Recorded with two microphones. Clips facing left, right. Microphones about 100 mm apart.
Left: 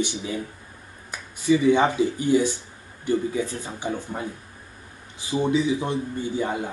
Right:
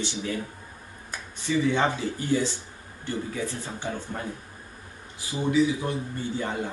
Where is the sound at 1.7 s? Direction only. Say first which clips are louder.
Left 6 dB; 15° left (ahead or behind).